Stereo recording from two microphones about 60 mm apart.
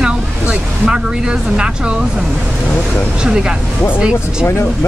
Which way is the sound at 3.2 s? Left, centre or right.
Centre.